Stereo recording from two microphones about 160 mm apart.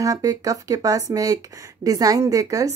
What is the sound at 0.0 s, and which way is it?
Speech, 20° right (ahead or behind).